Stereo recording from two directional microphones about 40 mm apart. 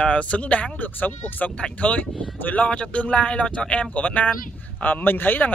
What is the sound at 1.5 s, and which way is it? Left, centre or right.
Speech, left.